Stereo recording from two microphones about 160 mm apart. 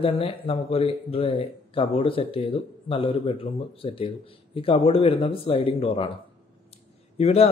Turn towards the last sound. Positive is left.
turn(degrees=40)  # may be behind; listen again after turning